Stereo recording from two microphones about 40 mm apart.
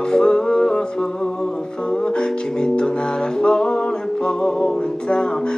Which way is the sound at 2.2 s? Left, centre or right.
Centre.